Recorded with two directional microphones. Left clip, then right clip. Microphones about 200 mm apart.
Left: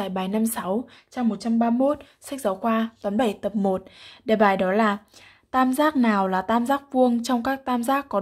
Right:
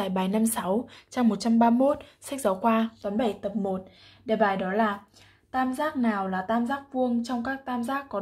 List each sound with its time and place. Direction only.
0.0 s a woman's voice: 5° left (ahead or behind)
3.0 s speech: 20° left (ahead or behind)
4.3 s speech: 30° left (ahead or behind)